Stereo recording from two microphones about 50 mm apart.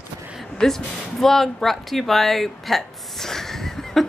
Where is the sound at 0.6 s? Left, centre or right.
Centre.